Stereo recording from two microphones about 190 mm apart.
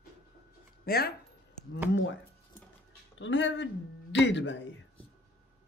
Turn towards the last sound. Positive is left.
turn(degrees=75)  # may be behind; listen again after turning